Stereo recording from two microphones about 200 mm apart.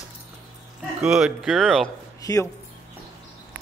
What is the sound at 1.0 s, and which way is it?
Speech, 5° right (ahead or behind).